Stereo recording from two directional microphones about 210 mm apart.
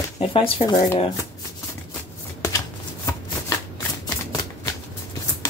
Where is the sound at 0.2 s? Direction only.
25° left (ahead or behind).